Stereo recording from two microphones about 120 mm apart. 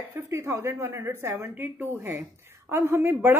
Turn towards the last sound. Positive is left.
turn(degrees=-20)  # may be behind; listen again after turning